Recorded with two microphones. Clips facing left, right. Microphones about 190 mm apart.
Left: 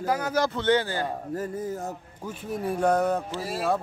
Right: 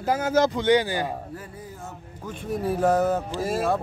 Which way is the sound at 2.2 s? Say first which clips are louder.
Right 3 dB; 5° left (ahead or behind).